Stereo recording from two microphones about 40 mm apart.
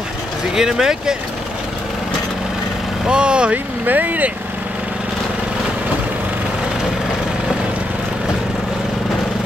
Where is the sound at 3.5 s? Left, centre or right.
Right.